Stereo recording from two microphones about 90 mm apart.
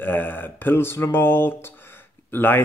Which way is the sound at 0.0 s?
20° left (ahead or behind).